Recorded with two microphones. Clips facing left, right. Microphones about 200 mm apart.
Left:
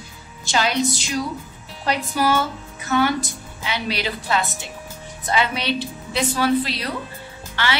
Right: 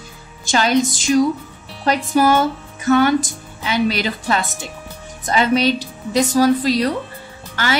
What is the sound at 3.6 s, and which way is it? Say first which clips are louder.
A woman's voice: right 7 dB; 45° right (ahead or behind).